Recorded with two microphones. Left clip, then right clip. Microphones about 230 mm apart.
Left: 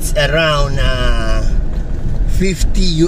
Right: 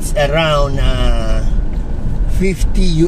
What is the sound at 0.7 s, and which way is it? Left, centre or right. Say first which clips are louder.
Speech: left 2 dB; left.